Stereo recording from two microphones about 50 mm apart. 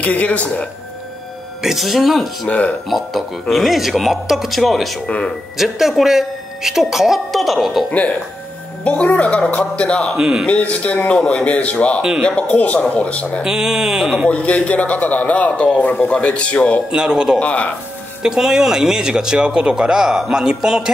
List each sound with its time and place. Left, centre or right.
0.0 s a man's voice: left
1.6 s a woman's voice: centre
2.4 s a man's voice: left
2.9 s a woman's voice: centre
5.0 s a man's voice: left
5.6 s a woman's voice: centre
8.8 s a man's voice: left
10.1 s speech: centre
10.4 s a man's voice: left
13.4 s speech: centre
14.3 s a man's voice: left
16.9 s speech: centre
17.4 s a man's voice: left
18.2 s speech: centre